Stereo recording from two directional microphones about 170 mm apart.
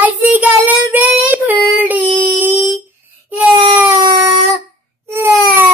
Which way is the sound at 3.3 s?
10° right (ahead or behind).